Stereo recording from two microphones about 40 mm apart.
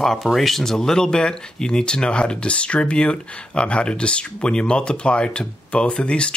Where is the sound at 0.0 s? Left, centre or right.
Centre.